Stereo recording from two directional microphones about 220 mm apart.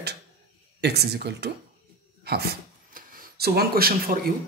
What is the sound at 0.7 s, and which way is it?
Speech, 50° right (ahead or behind).